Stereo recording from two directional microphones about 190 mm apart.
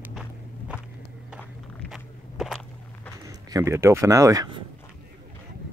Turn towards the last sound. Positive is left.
turn(degrees=-20)  # may be behind; listen again after turning